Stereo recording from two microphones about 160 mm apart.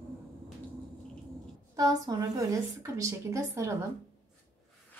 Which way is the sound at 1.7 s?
25° right (ahead or behind).